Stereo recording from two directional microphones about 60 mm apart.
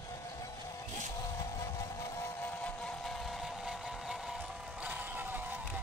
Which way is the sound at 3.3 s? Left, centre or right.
Centre.